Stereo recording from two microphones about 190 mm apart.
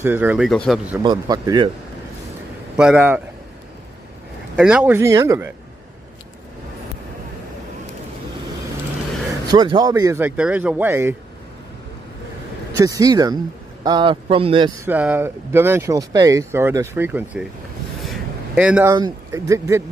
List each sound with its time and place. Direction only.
0.0 s speech: 10° right (ahead or behind)
1.0 s speech: 20° right (ahead or behind)
2.8 s speech: 5° right (ahead or behind)
4.6 s speech: 5° right (ahead or behind)
9.5 s speech: 20° right (ahead or behind)
12.7 s speech: 20° right (ahead or behind)
14.9 s speech: 10° right (ahead or behind)
18.0 s a sound: 5° right (ahead or behind)
18.9 s speech: 20° right (ahead or behind)